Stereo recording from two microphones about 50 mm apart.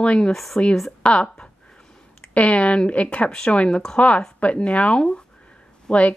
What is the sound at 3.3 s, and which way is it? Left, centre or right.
Speech, centre.